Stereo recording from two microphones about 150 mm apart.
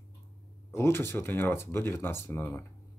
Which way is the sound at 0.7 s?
15° left (ahead or behind).